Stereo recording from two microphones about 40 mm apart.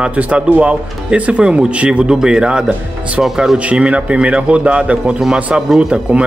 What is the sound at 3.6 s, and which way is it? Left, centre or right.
Speech, right.